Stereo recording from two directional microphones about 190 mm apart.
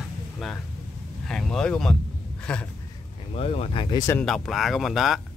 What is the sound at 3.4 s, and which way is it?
Speech, 30° left (ahead or behind).